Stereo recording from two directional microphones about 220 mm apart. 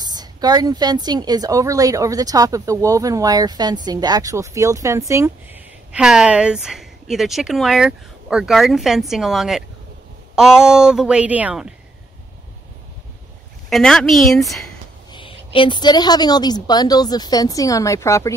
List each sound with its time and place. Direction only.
0.0 s a woman's voice: 20° right (ahead or behind)
13.7 s speech: centre (ahead or behind)
15.1 s a woman's voice: 25° left (ahead or behind)